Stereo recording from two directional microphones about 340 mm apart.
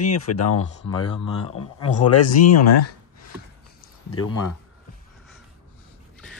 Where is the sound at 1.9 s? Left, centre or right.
Left.